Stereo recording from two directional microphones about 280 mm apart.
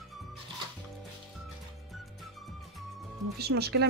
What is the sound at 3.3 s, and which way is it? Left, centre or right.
Speech, right.